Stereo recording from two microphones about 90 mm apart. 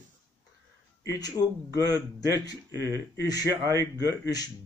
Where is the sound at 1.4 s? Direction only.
30° left (ahead or behind).